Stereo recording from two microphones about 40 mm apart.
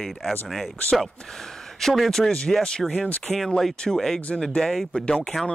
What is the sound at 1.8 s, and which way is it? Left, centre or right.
Speech, centre.